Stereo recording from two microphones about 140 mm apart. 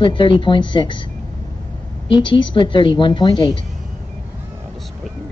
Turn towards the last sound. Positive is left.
turn(degrees=35)  # may be behind; listen again after turning